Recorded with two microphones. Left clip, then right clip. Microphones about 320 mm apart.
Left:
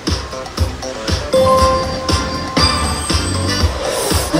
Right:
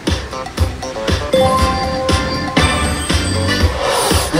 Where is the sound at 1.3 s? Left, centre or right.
Centre.